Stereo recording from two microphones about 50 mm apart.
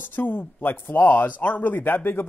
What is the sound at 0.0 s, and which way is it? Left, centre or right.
Speech, left.